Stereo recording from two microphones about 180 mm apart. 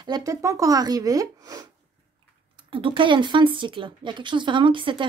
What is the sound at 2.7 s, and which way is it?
Speech, 30° right (ahead or behind).